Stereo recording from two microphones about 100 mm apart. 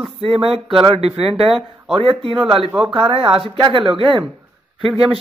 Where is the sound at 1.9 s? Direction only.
60° right (ahead or behind).